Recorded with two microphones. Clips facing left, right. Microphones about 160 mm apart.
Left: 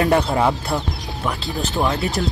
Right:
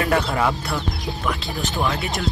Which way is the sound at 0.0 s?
25° left (ahead or behind).